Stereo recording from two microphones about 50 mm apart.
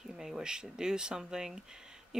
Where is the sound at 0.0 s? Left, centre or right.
Centre.